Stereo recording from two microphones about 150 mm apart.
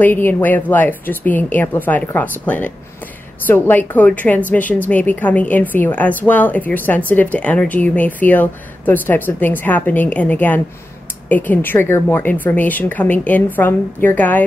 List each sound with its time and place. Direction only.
0.0 s a woman's voice: 10° left (ahead or behind)